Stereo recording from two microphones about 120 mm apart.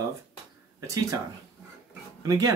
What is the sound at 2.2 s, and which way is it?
Speech, 30° right (ahead or behind).